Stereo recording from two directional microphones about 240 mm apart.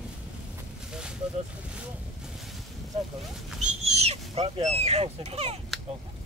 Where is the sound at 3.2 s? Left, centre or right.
Centre.